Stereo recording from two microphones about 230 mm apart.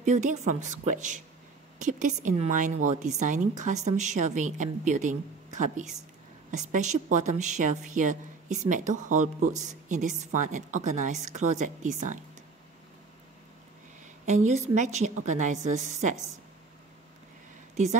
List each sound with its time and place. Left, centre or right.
0.0 s speech: right
6.5 s speech: right
14.2 s speech: right